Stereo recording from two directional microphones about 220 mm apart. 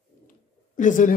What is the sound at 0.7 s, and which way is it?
Speech, 35° left (ahead or behind).